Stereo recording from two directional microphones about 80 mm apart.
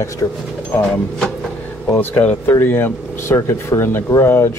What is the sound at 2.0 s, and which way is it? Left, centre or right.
Speech, centre.